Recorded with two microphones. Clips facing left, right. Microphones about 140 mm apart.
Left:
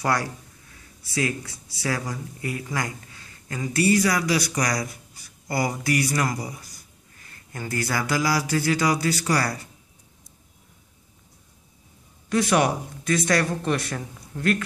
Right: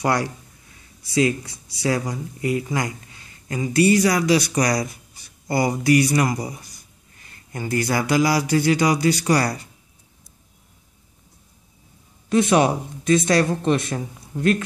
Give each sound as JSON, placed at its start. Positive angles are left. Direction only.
{"t": 0.0, "sound": "speech", "side_deg": -20}
{"t": 12.3, "sound": "speech", "side_deg": -20}